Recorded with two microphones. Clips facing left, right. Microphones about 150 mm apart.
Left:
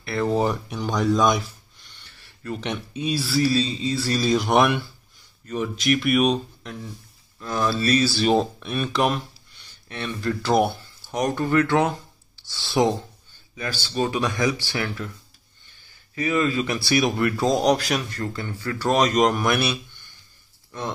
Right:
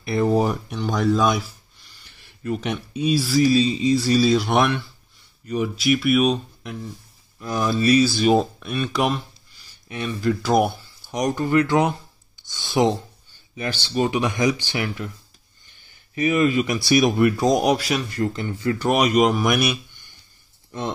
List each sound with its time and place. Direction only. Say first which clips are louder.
0.0 s speech: right 4 dB; 20° right (ahead or behind)
0.3 s speech: right 2 dB; 5° right (ahead or behind)
5.5 s speech: right 2 dB; 10° right (ahead or behind)
16.2 s speech: right 3 dB; 20° right (ahead or behind)
17.7 s speech: right 1 dB; centre (ahead or behind)
18.1 s speech: right 5 dB; 20° right (ahead or behind)